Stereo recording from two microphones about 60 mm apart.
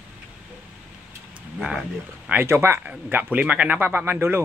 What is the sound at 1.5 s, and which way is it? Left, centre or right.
Speech, centre.